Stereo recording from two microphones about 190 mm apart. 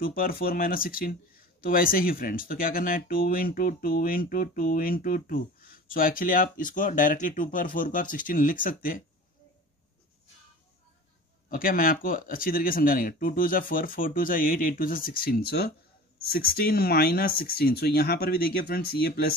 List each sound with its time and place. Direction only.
0.0 s speech: 50° left (ahead or behind)
11.4 s speech: 50° left (ahead or behind)